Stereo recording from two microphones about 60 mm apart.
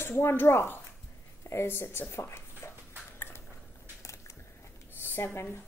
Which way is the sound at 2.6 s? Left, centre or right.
Left.